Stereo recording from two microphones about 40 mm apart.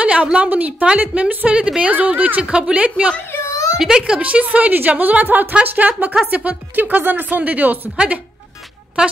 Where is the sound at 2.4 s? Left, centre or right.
Right.